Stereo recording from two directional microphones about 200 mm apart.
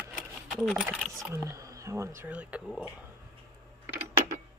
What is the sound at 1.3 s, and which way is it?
Speech, 15° right (ahead or behind).